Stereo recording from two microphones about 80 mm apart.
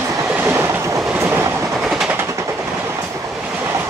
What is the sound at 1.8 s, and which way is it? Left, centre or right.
Train, centre.